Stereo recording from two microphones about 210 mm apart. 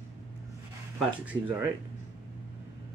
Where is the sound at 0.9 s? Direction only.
5° right (ahead or behind).